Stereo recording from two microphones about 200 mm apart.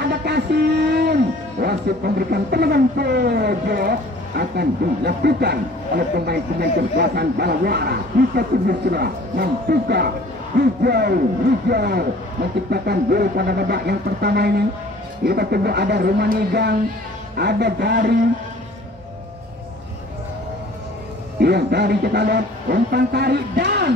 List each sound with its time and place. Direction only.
0.0 s a sound: 55° right (ahead or behind)
1.6 s speech: 55° right (ahead or behind)
21.4 s speech: 55° right (ahead or behind)